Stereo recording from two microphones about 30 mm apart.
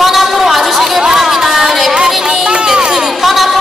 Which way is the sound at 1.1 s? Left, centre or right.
Centre.